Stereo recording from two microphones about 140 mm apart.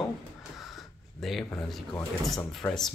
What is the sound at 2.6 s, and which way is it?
Speech, 15° left (ahead or behind).